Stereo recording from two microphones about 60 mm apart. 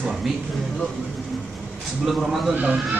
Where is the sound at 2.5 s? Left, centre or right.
Right.